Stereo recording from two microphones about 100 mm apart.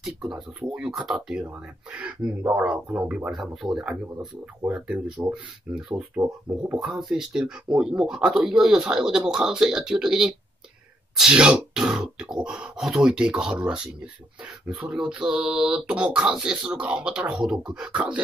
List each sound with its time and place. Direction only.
0.0 s speech: 5° right (ahead or behind)